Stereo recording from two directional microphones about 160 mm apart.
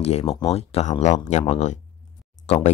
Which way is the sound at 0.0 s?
40° left (ahead or behind).